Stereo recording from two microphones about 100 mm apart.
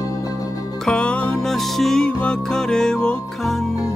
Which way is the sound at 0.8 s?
10° left (ahead or behind).